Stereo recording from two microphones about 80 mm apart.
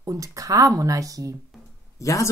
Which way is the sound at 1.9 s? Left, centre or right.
Left.